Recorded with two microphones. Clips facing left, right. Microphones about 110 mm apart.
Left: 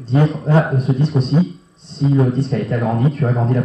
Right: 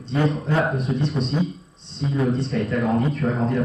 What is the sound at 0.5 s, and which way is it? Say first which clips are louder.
Speech: left 7 dB; centre (ahead or behind).